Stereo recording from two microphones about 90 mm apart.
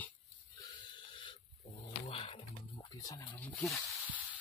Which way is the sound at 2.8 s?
45° left (ahead or behind).